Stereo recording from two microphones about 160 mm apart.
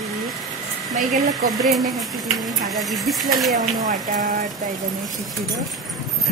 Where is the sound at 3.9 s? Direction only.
55° right (ahead or behind).